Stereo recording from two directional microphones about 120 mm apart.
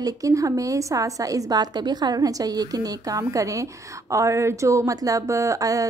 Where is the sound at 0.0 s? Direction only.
30° right (ahead or behind).